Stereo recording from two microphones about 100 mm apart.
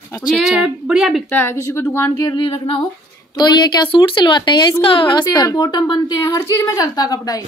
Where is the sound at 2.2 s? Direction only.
40° left (ahead or behind).